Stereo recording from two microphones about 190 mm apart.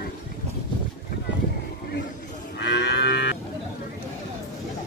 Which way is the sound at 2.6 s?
65° left (ahead or behind).